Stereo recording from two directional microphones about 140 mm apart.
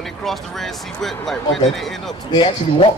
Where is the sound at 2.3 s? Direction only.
35° left (ahead or behind).